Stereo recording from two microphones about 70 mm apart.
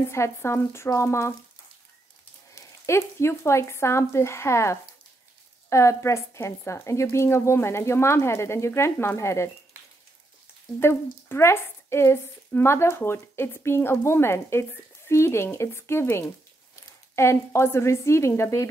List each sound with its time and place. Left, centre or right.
0.1 s a woman's voice: left
2.5 s a woman's voice: left
10.8 s a woman's voice: left